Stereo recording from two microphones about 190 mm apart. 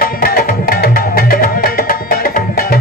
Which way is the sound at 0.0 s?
50° left (ahead or behind).